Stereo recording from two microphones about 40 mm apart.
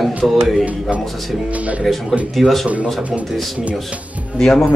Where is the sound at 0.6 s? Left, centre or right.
Right.